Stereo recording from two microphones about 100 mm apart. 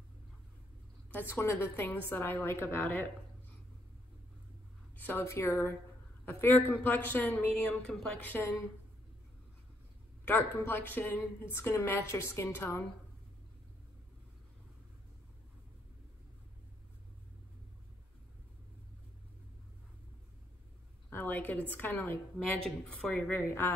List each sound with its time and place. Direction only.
1.3 s a woman's voice: 20° left (ahead or behind)
4.9 s a woman's voice: 25° left (ahead or behind); by 8.2 s 5° left (ahead or behind)
8.2 s a woman's voice: 20° left (ahead or behind)
10.2 s a woman's voice: 20° left (ahead or behind)
21.1 s a woman's voice: 20° left (ahead or behind)